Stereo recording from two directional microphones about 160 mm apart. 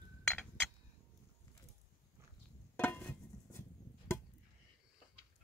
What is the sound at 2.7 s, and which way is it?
Chop, 10° left (ahead or behind).